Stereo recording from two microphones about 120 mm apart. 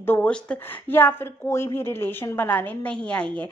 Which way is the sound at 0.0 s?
15° left (ahead or behind).